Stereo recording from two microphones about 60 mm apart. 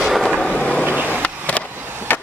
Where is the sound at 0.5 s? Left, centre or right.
Centre.